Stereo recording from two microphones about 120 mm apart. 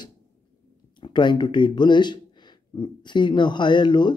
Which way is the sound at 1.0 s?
40° left (ahead or behind).